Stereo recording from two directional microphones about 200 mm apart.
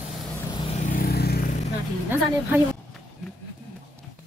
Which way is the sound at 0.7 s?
40° left (ahead or behind).